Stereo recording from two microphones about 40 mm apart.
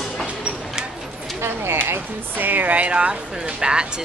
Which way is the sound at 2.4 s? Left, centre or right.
Right.